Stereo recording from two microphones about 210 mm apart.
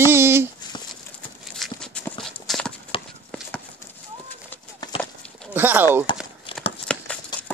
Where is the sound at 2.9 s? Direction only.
25° left (ahead or behind).